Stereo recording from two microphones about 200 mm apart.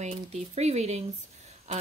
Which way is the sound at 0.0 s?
35° right (ahead or behind).